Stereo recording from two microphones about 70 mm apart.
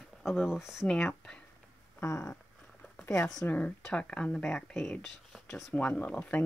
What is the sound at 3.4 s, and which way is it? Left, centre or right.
Speech, left.